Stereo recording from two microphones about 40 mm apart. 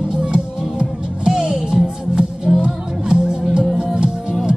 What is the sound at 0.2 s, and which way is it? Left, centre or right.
Music, right.